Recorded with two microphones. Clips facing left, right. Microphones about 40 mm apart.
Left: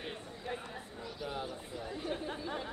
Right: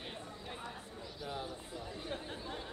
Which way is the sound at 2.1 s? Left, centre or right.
Left.